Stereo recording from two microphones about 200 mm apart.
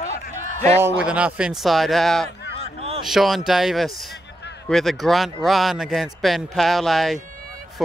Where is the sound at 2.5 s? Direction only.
30° right (ahead or behind).